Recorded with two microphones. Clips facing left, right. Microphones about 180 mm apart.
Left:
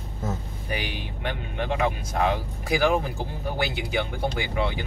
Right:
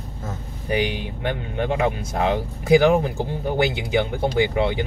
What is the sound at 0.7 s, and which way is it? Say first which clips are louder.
Speech: right 9 dB; 20° right (ahead or behind).